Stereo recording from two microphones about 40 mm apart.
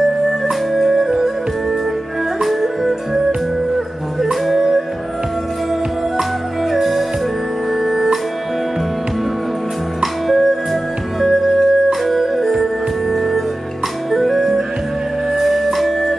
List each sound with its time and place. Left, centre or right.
0.0 s music: centre
2.4 s music: centre
6.7 s music: centre
10.2 s music: centre
13.1 s organ: centre
14.1 s music: centre